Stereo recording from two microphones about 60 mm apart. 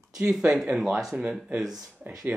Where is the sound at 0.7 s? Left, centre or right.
Centre.